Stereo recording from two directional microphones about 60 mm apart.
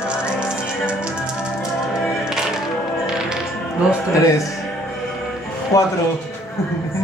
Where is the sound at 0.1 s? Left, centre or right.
Centre.